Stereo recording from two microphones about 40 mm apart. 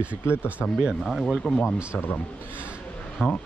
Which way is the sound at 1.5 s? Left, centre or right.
Left.